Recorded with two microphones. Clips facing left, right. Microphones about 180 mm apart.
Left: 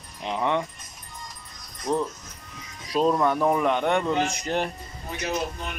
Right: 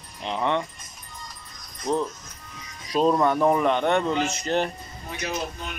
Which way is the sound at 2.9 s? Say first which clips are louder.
Right 1 dB; centre (ahead or behind).